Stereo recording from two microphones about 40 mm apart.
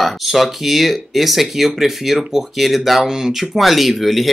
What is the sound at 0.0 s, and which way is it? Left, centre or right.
Speech, centre.